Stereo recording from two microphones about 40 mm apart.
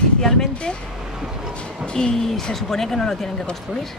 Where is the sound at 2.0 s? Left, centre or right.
Centre.